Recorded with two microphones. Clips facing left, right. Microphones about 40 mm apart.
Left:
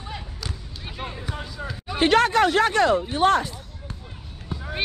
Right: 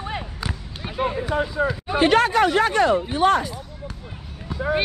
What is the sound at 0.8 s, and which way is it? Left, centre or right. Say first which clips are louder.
Basketball bounce: right 11 dB; centre.